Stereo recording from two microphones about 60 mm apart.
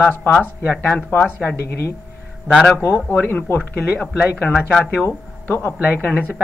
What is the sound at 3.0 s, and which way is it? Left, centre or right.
Speech, left.